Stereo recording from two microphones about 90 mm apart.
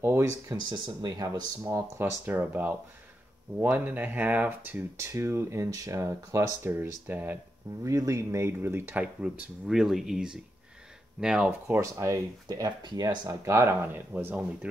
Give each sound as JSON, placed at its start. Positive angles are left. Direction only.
{"t": 0.0, "sound": "speech", "side_deg": -25}
{"t": 0.6, "sound": "speech", "side_deg": -55}
{"t": 1.1, "sound": "speech", "side_deg": -45}
{"t": 1.6, "sound": "speech", "side_deg": -30}
{"t": 6.7, "sound": "speech", "side_deg": -25}
{"t": 7.8, "sound": "speech", "side_deg": -35}
{"t": 11.6, "sound": "speech", "side_deg": -35}
{"t": 12.6, "sound": "speech", "side_deg": -50}
{"t": 13.4, "sound": "speech", "side_deg": -30}